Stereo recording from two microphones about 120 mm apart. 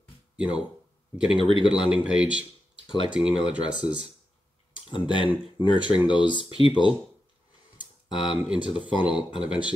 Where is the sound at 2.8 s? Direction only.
45° left (ahead or behind).